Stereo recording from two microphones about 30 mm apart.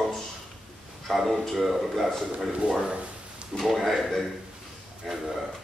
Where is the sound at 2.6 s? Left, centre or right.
Right.